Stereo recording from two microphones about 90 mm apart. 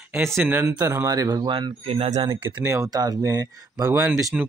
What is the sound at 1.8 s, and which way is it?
Speech, 90° right.